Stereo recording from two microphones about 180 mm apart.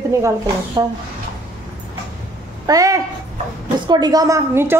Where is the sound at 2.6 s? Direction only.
20° right (ahead or behind).